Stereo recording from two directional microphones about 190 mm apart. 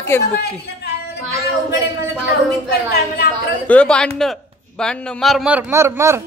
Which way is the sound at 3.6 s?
5° left (ahead or behind).